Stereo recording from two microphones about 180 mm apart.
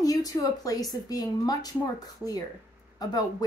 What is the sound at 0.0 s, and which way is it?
A woman's voice, 20° left (ahead or behind).